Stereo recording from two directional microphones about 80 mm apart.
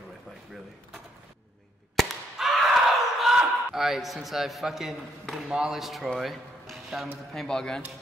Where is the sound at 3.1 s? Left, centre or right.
Centre.